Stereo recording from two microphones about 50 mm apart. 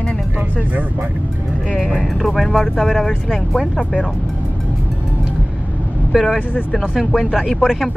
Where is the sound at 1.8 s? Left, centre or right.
Centre.